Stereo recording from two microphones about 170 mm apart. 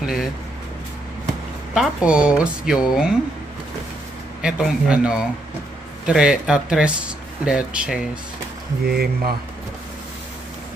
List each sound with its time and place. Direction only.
0.0 s vehicle: centre (ahead or behind)
1.7 s speech: 5° right (ahead or behind)
4.4 s speech: 5° right (ahead or behind)
8.8 s speech: 65° right (ahead or behind)